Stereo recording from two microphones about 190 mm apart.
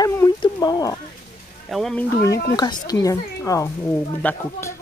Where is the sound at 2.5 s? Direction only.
20° left (ahead or behind).